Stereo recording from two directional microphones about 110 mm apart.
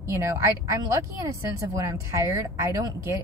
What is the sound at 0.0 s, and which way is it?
A woman's voice, 25° right (ahead or behind).